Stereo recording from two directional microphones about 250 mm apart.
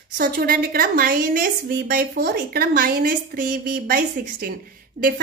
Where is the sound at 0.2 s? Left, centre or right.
Right.